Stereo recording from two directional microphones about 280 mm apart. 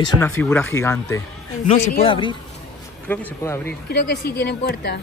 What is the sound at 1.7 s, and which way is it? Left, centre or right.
Speech, left.